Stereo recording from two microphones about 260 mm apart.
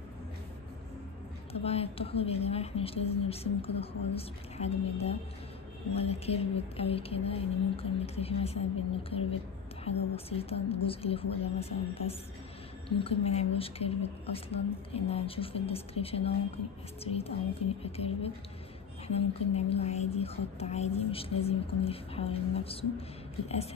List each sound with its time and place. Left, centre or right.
1.5 s a woman's voice: left
9.8 s a woman's voice: left